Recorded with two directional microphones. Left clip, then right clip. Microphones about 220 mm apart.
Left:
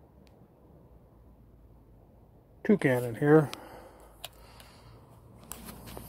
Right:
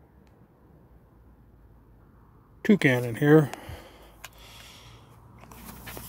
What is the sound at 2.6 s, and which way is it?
Speech, 35° right (ahead or behind).